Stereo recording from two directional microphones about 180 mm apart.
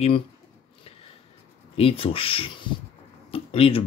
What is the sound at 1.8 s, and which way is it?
Speech, 30° left (ahead or behind).